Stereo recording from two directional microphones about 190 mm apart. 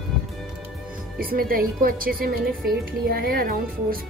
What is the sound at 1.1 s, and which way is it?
A woman's voice, 50° right (ahead or behind).